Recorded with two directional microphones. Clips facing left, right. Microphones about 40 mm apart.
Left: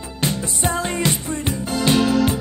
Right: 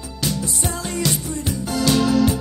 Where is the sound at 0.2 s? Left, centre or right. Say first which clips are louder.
Left 2 dB; left.